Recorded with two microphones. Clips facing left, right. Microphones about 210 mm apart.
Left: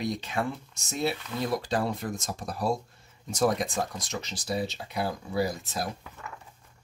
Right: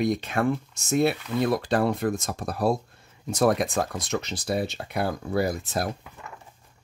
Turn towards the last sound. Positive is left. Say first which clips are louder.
# right 3 dB
turn(degrees=-55)  # may be behind; listen again after turning